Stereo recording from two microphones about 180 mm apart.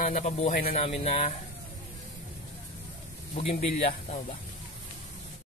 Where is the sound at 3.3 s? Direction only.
35° left (ahead or behind).